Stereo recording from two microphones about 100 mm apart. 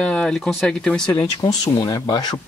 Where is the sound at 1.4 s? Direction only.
40° left (ahead or behind).